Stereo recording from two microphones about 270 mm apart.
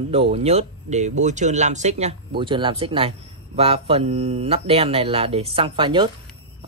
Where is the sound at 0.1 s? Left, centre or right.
Right.